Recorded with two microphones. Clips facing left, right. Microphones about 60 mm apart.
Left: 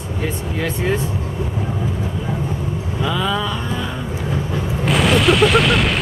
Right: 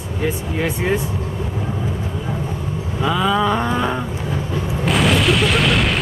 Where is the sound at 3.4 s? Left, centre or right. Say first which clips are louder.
Right 6 dB; right.